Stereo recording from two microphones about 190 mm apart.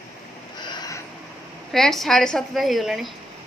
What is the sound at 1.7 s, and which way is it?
A woman's voice, centre (ahead or behind).